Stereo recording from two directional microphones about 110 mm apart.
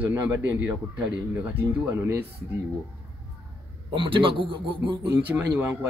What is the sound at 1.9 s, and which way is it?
Speech, 25° right (ahead or behind).